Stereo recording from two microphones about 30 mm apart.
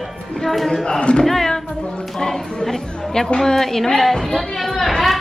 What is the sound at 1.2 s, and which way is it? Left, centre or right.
A woman's voice, centre.